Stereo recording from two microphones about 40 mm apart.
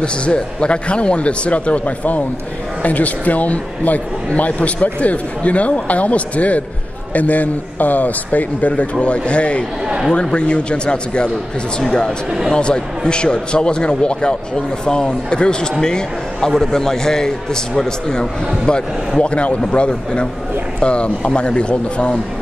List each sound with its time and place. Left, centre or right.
0.0 s a man's voice: left
12.5 s a man's voice: left